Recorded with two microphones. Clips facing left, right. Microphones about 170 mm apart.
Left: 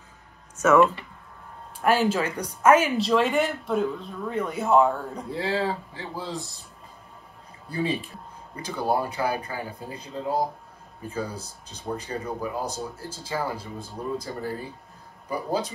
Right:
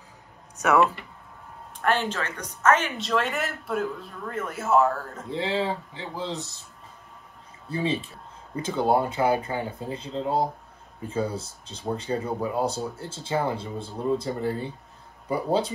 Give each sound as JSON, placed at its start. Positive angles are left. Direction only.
{"t": 0.6, "sound": "speech", "side_deg": -15}
{"t": 1.8, "sound": "speech", "side_deg": 10}
{"t": 3.0, "sound": "speech", "side_deg": 0}
{"t": 5.3, "sound": "speech", "side_deg": -20}
{"t": 7.7, "sound": "speech", "side_deg": -25}